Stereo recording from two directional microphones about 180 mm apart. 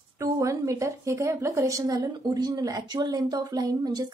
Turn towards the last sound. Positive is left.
turn(degrees=-20)  # may be behind; listen again after turning